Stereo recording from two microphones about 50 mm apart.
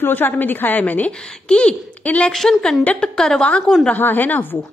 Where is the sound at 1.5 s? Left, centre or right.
Centre.